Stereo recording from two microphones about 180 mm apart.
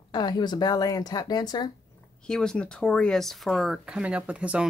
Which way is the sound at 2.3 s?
5° left (ahead or behind).